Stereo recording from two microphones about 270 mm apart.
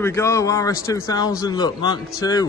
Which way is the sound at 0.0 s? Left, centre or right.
Centre.